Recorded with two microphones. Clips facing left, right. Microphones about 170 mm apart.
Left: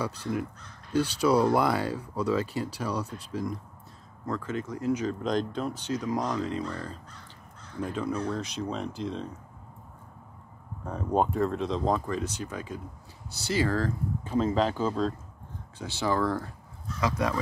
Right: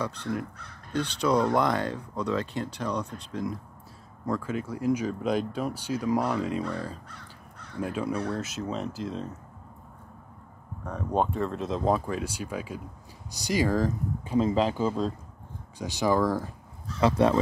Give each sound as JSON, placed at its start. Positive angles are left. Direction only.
{"t": 0.0, "sound": "speech", "side_deg": 5}
{"t": 4.3, "sound": "speech", "side_deg": -10}
{"t": 10.9, "sound": "speech", "side_deg": 5}
{"t": 11.5, "sound": "speech", "side_deg": -5}
{"t": 16.8, "sound": "speech", "side_deg": -30}